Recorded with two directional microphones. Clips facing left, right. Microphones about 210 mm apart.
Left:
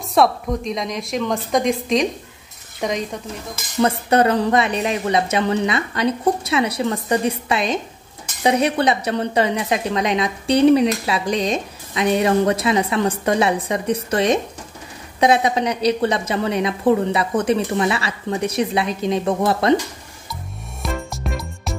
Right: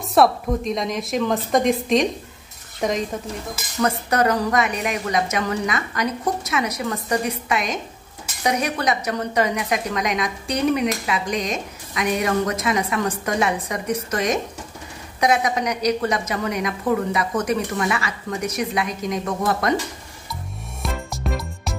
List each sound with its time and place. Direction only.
0.1 s a woman's voice: centre (ahead or behind)
3.8 s a woman's voice: 30° left (ahead or behind)
20.8 s music: centre (ahead or behind)